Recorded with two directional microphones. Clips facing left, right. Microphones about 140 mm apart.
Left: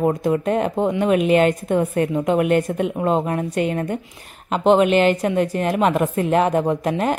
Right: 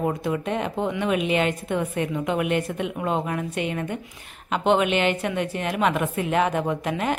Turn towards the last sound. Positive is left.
turn(degrees=40)  # may be behind; listen again after turning